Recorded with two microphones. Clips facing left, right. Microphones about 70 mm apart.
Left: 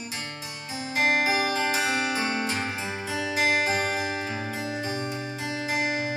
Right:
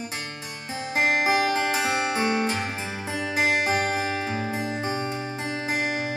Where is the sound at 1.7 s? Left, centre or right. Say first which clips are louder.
Right 2 dB; right.